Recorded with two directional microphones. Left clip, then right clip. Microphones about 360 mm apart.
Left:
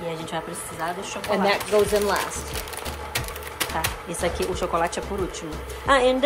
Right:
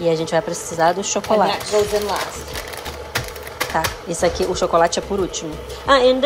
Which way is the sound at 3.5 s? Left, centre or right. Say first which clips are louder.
Right 6 dB; centre.